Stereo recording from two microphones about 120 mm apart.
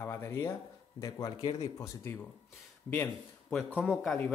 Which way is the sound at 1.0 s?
30° left (ahead or behind).